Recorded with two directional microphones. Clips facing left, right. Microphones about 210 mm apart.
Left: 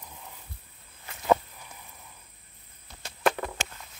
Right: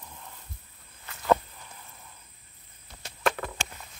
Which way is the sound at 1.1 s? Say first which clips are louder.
Even; 20° left (ahead or behind).